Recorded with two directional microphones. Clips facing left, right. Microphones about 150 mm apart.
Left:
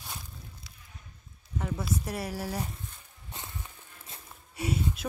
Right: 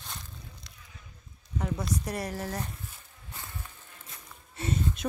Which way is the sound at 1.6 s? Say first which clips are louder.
Right 1 dB; 5° left (ahead or behind).